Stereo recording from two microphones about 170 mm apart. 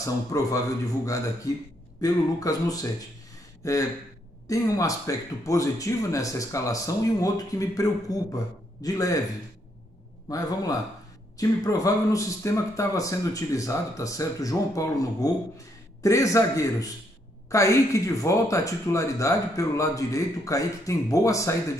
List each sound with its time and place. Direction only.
0.0 s speech: 20° left (ahead or behind)
10.2 s speech: 20° left (ahead or behind)